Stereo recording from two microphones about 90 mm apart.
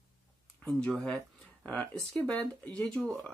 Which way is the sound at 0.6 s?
10° left (ahead or behind).